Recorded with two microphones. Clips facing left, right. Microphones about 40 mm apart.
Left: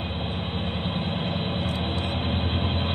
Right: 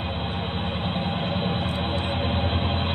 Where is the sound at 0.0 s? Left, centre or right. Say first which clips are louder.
Right 2 dB; centre.